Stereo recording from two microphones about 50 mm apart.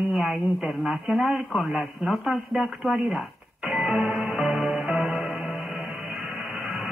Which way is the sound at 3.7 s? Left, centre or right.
Centre.